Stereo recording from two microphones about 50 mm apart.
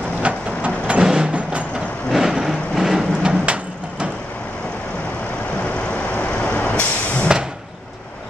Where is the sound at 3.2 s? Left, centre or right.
Centre.